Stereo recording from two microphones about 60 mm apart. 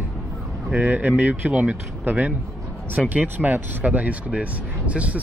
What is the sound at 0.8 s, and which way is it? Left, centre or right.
Speech, right.